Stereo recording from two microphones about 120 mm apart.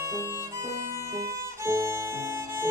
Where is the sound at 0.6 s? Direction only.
25° right (ahead or behind).